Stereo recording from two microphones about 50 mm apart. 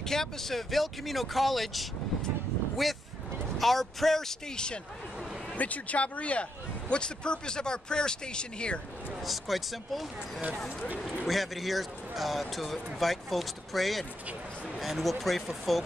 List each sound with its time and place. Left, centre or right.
0.0 s speech: centre
5.6 s speech: left
9.2 s speech: centre
11.2 s speech: centre